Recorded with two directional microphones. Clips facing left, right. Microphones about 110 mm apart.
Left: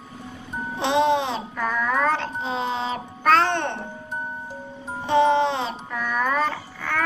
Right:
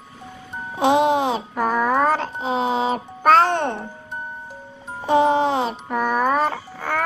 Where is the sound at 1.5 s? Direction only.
40° right (ahead or behind).